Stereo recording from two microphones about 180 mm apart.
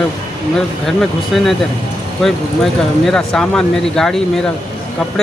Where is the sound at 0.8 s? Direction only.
Centre (ahead or behind).